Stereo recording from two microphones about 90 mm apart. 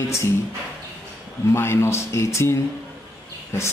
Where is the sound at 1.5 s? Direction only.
30° left (ahead or behind).